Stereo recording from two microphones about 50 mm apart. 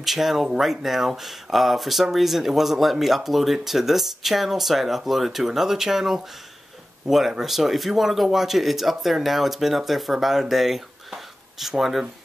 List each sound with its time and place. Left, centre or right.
0.0 s speech: centre